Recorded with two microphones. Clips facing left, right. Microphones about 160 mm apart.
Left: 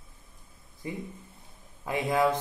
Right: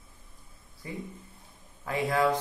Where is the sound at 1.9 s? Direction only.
20° left (ahead or behind).